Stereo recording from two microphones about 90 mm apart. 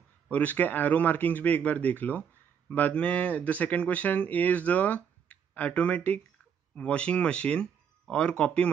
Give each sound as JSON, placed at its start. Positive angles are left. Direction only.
{"t": 0.3, "sound": "a man's voice", "side_deg": 15}